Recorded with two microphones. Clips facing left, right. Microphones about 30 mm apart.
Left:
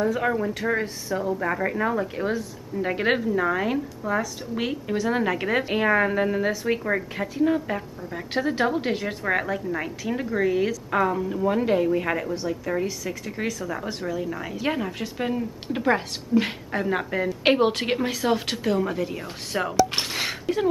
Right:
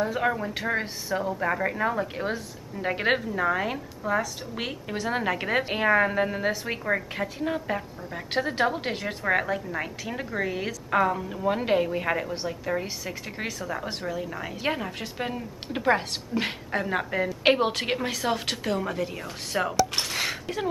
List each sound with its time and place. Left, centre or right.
0.0 s a woman's voice: centre
12.0 s a woman's voice: centre
12.8 s speech: centre
14.0 s a woman's voice: centre